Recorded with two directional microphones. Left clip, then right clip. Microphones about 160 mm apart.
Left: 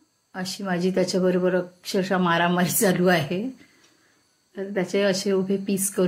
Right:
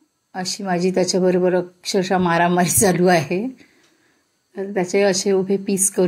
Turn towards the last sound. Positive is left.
turn(degrees=-35)  # may be behind; listen again after turning